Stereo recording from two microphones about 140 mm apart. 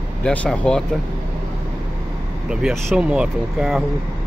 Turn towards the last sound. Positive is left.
turn(degrees=-5)  # may be behind; listen again after turning